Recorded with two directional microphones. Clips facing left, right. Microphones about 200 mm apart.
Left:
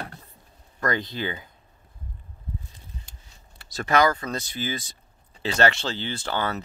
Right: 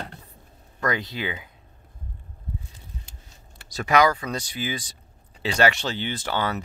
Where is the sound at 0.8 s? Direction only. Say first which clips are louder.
Even; 5° right (ahead or behind).